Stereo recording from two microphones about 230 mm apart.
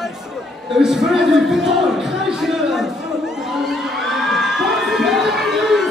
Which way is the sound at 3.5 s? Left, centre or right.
Centre.